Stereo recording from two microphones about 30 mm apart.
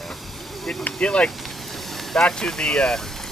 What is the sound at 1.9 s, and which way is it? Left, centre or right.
Vehicle, centre.